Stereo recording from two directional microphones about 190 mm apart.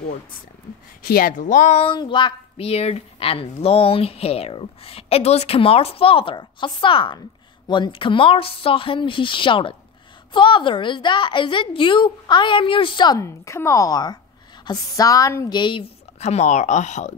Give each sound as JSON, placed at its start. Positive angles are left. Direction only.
{"t": 1.0, "sound": "speech", "side_deg": 50}